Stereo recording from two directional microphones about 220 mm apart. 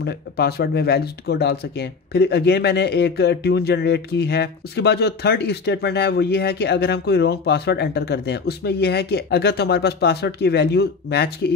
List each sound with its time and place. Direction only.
0.0 s speech: 45° left (ahead or behind)